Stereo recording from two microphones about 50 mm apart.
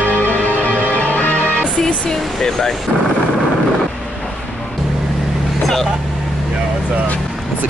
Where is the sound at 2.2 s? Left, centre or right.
Centre.